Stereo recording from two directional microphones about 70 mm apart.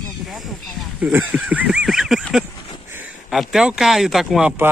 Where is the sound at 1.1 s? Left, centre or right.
Right.